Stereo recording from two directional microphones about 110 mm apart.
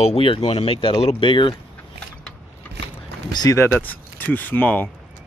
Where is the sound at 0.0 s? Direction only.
55° left (ahead or behind).